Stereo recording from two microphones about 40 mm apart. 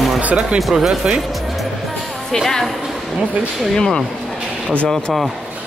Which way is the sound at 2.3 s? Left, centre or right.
Centre.